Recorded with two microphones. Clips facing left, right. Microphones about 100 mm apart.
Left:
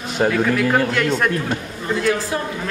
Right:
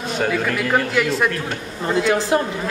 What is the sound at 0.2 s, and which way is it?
Speech, 20° left (ahead or behind).